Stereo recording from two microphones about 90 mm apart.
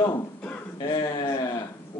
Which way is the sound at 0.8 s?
50° left (ahead or behind).